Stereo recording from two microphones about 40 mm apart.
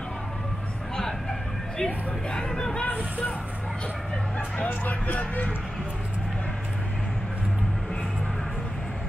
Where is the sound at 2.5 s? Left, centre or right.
Centre.